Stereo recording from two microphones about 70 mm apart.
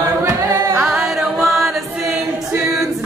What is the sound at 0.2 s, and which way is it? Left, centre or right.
A capella, right.